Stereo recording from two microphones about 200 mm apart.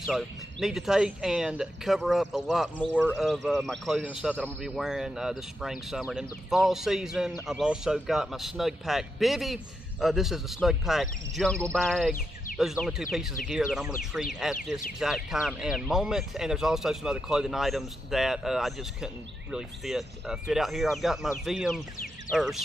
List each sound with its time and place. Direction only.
0.0 s speech: centre (ahead or behind)